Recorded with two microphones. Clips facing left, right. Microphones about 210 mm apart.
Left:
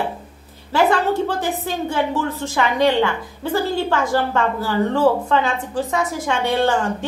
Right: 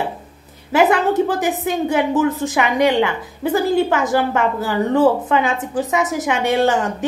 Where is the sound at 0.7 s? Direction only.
20° right (ahead or behind).